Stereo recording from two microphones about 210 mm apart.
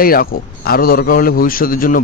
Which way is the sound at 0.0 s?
45° left (ahead or behind).